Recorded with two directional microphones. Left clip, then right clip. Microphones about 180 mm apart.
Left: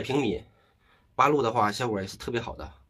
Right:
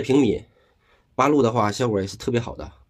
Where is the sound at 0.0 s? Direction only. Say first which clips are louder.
Right 8 dB; 35° right (ahead or behind).